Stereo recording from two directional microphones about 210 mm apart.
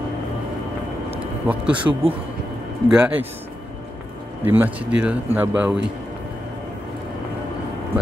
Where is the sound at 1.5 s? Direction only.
5° right (ahead or behind).